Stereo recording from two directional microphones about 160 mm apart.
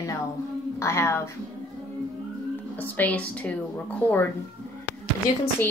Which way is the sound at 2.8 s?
10° left (ahead or behind).